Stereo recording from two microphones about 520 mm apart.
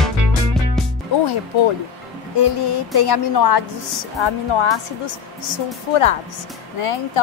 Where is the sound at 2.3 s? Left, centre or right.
Left.